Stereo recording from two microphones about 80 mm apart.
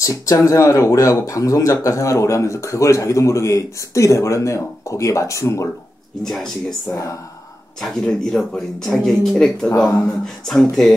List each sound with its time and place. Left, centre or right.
0.0 s speech: left
6.2 s speech: centre